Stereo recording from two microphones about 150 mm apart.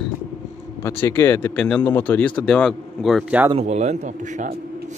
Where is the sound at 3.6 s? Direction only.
50° right (ahead or behind).